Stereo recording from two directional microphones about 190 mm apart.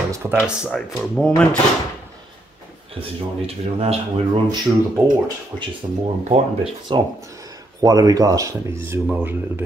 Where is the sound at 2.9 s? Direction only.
30° right (ahead or behind).